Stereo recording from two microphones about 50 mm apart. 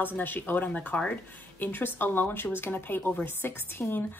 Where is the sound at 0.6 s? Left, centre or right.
Left.